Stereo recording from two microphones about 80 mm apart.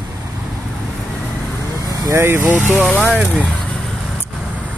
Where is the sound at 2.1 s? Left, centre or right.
Right.